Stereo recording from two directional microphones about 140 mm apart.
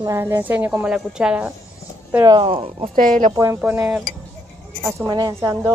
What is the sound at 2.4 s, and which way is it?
Speech, 40° right (ahead or behind).